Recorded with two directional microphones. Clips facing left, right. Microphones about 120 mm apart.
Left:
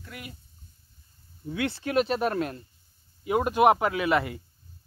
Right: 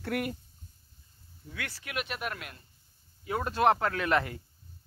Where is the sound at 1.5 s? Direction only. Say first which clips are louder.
Left 12 dB; 25° left (ahead or behind).